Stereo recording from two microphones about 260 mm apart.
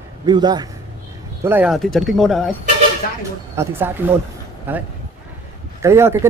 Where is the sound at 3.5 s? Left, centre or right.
Centre.